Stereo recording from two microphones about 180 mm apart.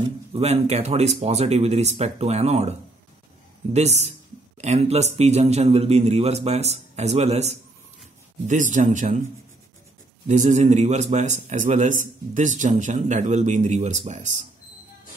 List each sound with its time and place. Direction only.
0.3 s a man's voice: 35° right (ahead or behind)
3.7 s a man's voice: 40° right (ahead or behind)
10.2 s a man's voice: 40° right (ahead or behind)